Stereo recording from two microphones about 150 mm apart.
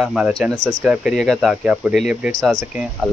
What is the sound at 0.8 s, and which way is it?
Speech, 5° right (ahead or behind).